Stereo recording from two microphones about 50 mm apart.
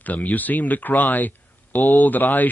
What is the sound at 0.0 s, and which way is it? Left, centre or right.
Speech, left.